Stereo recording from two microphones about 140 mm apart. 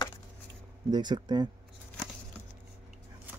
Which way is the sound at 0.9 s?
30° right (ahead or behind).